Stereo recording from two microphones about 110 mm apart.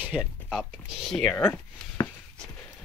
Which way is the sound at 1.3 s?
20° left (ahead or behind).